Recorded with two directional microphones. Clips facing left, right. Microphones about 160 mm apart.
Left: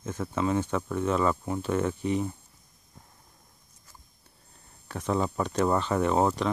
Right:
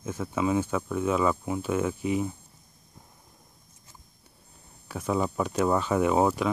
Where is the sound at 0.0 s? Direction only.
10° right (ahead or behind).